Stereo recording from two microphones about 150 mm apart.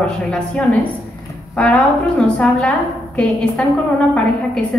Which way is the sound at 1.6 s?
10° left (ahead or behind).